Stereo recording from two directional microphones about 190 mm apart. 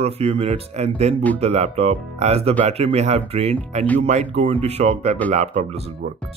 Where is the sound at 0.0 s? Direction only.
35° right (ahead or behind).